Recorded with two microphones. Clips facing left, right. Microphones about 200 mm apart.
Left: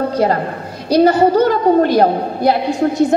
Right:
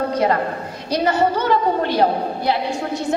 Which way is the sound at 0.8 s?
35° left (ahead or behind).